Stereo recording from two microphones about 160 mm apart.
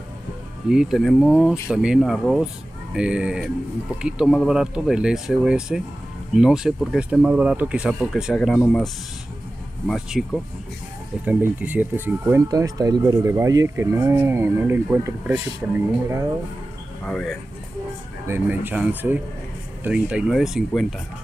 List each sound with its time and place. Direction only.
0.7 s speech: 5° right (ahead or behind)
11.2 s speech: 10° right (ahead or behind)
17.0 s speech: 5° left (ahead or behind)
18.2 s speech: 15° right (ahead or behind)